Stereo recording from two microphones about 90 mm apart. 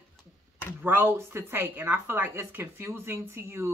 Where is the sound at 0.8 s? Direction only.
20° right (ahead or behind).